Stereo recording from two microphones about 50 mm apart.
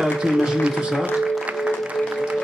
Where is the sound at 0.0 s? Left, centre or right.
Centre.